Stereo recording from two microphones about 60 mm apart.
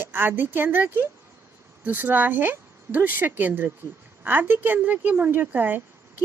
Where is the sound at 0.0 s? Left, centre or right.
Right.